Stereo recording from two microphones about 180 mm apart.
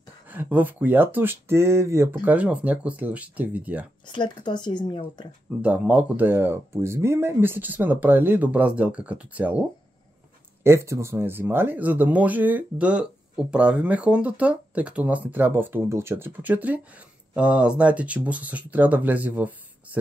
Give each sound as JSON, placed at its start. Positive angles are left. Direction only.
{"t": 0.3, "sound": "speech", "side_deg": -10}
{"t": 4.1, "sound": "speech", "side_deg": 25}
{"t": 5.6, "sound": "speech", "side_deg": -10}
{"t": 10.6, "sound": "speech", "side_deg": -15}